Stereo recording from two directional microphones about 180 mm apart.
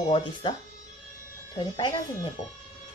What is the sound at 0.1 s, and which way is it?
Speech, 30° left (ahead or behind).